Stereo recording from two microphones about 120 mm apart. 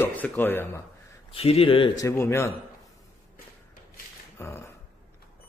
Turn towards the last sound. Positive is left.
turn(degrees=20)  # may be behind; listen again after turning